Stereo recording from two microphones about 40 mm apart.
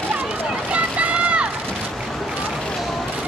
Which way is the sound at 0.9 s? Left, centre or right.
Right.